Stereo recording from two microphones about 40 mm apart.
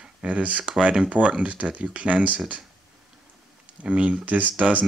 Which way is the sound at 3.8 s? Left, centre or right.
Right.